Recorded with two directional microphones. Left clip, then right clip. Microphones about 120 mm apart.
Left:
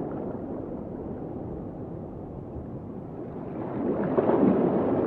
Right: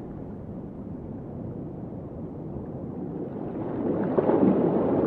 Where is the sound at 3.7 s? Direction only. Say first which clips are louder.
Even; 30° left (ahead or behind).